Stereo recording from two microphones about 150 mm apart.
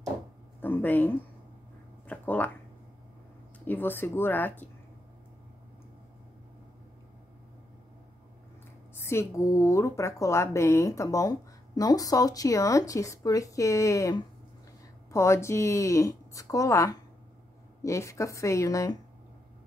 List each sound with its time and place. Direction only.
0.6 s speech: 10° left (ahead or behind)
2.0 s a sound: 10° left (ahead or behind)
3.5 s speech: 10° left (ahead or behind)
8.9 s a woman's voice: 15° left (ahead or behind)